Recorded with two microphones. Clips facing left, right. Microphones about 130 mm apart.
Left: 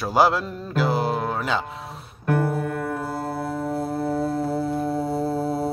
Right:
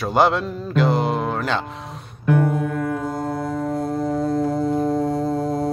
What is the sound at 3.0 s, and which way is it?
Music, 5° left (ahead or behind).